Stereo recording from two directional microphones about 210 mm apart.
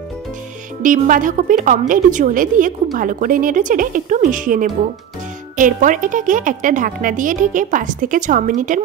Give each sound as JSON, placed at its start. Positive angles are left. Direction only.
{"t": 0.8, "sound": "a woman's voice", "side_deg": -40}